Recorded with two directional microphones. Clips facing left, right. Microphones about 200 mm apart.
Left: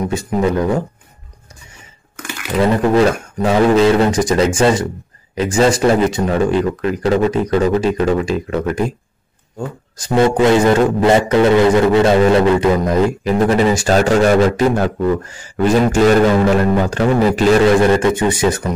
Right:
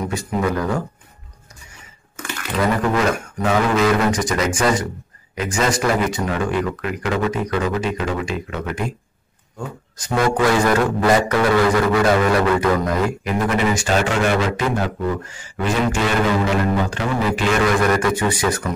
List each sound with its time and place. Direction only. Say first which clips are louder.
0.0 s a man's voice: left 5 dB; 25° left (ahead or behind)
2.6 s a man's voice: left 6 dB; 30° left (ahead or behind)
10.0 s a man's voice: left 6 dB; 30° left (ahead or behind)
17.6 s a man's voice: left 6 dB; 25° left (ahead or behind)